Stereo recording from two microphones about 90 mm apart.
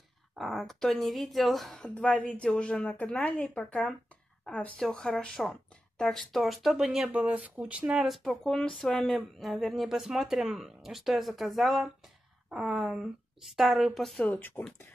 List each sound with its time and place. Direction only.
0.4 s speech: centre (ahead or behind); by 4.7 s 15° left (ahead or behind)
4.7 s speech: 5° left (ahead or behind)
7.2 s speech: 15° right (ahead or behind)
8.3 s speech: 10° left (ahead or behind)
14.2 s speech: 20° left (ahead or behind)